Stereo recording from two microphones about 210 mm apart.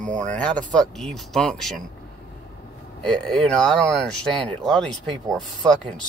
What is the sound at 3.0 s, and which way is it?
Speech, 5° left (ahead or behind).